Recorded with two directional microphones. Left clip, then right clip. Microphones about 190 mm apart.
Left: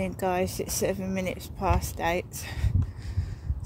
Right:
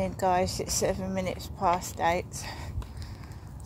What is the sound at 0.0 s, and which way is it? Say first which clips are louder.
Speech: right 2 dB; 50° left (ahead or behind).